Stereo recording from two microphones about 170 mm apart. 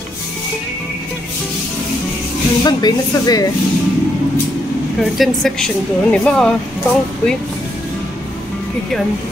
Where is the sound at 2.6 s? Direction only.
25° left (ahead or behind).